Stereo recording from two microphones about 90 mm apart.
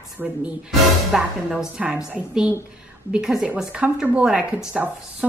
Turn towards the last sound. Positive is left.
turn(degrees=-15)  # may be behind; listen again after turning